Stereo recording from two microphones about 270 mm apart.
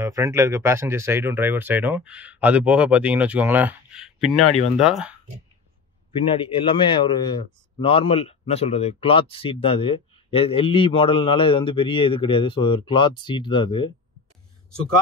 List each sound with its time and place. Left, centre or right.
0.0 s speech: centre
6.3 s a man's voice: centre